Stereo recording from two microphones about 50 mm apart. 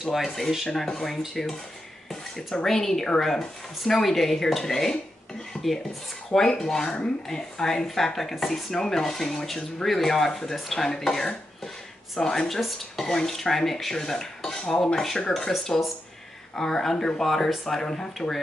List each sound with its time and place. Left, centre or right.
0.0 s dishes: centre
0.7 s speech: centre
1.1 s dishes: centre
2.6 s speech: centre
5.5 s a sound: left
6.6 s speech: centre
12.5 s speech: centre
15.5 s dishes: centre
16.5 s speech: centre